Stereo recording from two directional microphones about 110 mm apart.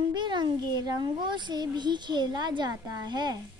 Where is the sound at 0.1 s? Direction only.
45° right (ahead or behind).